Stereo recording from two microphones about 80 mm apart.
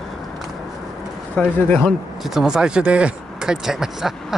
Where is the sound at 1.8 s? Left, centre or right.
Centre.